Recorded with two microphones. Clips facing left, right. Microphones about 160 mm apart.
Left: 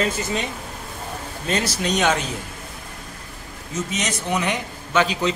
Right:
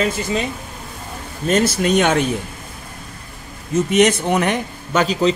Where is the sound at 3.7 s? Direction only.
60° right (ahead or behind).